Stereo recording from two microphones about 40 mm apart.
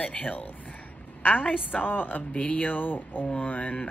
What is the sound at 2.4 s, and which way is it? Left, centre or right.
Speech, left.